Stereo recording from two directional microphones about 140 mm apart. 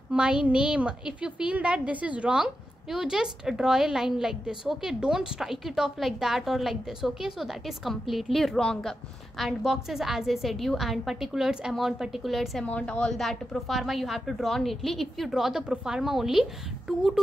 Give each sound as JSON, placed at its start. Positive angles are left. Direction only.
{"t": 0.1, "sound": "a woman's voice", "side_deg": -5}